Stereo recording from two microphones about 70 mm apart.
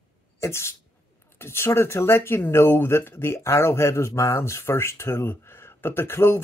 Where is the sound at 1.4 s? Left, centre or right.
Left.